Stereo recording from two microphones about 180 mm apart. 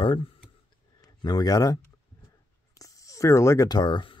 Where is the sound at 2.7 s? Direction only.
20° left (ahead or behind).